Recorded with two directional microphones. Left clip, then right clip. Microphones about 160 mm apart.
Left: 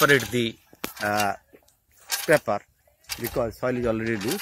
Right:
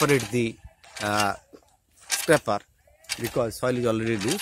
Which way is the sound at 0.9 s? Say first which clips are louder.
Even; 10° right (ahead or behind).